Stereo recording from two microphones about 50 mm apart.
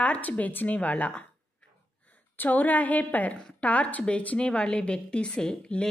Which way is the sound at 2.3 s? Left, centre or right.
Left.